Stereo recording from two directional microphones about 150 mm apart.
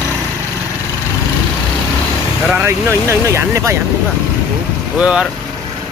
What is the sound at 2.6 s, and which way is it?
Speech, 15° right (ahead or behind).